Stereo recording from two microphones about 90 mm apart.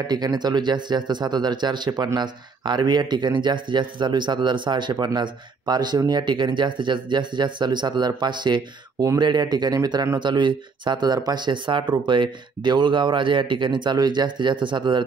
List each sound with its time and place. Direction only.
0.1 s speech: 50° right (ahead or behind)